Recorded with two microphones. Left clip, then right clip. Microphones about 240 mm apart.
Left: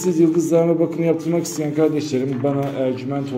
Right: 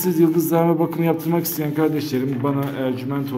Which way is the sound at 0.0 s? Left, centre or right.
Centre.